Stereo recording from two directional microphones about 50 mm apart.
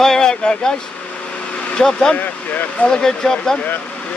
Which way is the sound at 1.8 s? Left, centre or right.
Centre.